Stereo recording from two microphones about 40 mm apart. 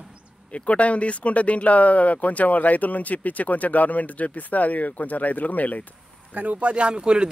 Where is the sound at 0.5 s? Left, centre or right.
Left.